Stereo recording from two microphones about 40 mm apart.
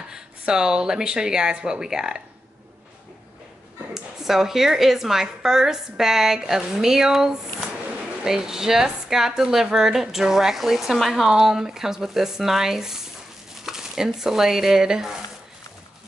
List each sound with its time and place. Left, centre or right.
0.1 s speech: centre
3.9 s a woman's voice: centre
11.2 s a woman's voice: centre